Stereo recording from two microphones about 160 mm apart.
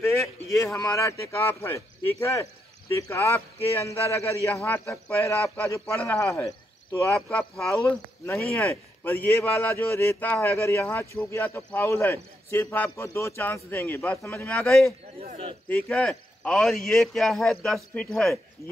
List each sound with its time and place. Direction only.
0.0 s a sound: 20° left (ahead or behind)
0.7 s a man's voice: 20° left (ahead or behind)
8.3 s a man's voice: 15° left (ahead or behind)